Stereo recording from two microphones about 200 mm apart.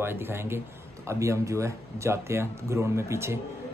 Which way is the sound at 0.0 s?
10° right (ahead or behind).